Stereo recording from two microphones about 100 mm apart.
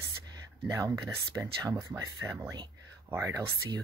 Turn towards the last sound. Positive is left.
turn(degrees=-30)  # may be behind; listen again after turning